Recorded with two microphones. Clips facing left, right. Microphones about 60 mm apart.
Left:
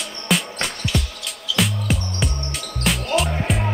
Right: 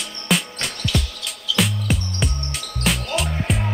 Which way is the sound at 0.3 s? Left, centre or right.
Centre.